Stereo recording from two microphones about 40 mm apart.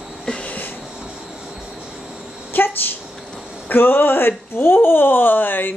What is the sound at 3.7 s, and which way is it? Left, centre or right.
Speech, left.